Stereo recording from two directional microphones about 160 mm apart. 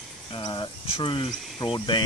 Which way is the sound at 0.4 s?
25° left (ahead or behind).